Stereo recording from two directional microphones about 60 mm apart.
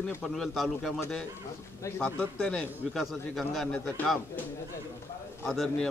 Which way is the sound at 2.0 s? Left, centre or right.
Left.